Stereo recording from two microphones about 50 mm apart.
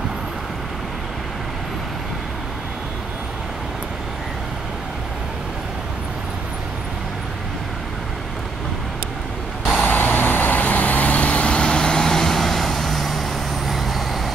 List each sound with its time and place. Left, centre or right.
9.8 s vehicle: left; by 14.3 s centre